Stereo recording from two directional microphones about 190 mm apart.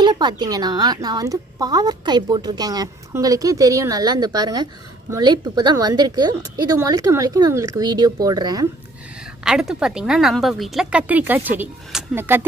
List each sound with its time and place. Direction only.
0.0 s speech: 25° right (ahead or behind)
9.4 s speech: centre (ahead or behind)